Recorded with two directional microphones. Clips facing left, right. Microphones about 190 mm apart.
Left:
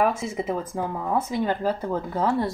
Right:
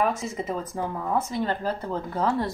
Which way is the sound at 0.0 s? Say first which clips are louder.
Left 2 dB; 10° left (ahead or behind).